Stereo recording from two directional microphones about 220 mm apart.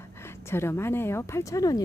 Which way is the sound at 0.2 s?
10° left (ahead or behind).